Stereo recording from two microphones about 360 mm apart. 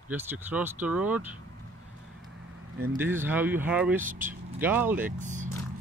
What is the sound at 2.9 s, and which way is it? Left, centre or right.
Speech, centre.